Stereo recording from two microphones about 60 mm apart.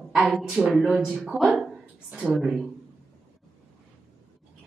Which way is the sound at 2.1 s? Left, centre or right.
Centre.